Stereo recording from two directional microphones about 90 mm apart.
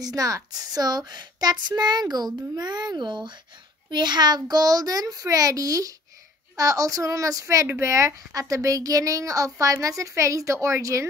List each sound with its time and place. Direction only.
0.0 s a woman's voice: 40° right (ahead or behind)
7.6 s speech: 25° right (ahead or behind)
7.9 s a woman's voice: 35° right (ahead or behind)